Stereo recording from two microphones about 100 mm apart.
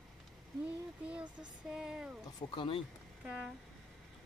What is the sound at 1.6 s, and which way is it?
Speech, 5° right (ahead or behind).